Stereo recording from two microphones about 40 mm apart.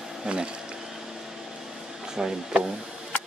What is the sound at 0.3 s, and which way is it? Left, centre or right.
Speech, right.